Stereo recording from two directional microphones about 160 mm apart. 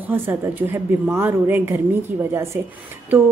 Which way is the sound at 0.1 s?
15° right (ahead or behind).